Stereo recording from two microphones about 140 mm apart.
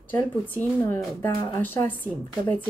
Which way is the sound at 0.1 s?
15° left (ahead or behind).